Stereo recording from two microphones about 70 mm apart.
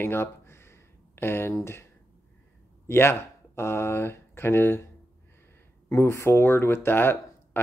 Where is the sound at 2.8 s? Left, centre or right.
Left.